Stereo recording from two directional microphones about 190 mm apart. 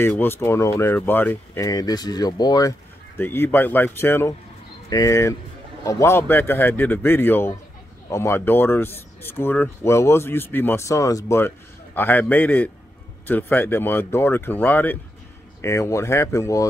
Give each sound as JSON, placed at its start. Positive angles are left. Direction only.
{"t": 0.0, "sound": "speech", "side_deg": 10}